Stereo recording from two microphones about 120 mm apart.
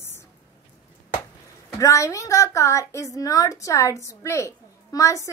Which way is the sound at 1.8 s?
25° left (ahead or behind).